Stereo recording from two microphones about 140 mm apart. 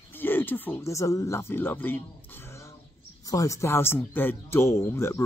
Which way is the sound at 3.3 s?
25° left (ahead or behind).